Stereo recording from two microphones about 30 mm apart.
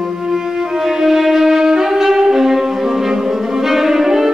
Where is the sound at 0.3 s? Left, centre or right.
Centre.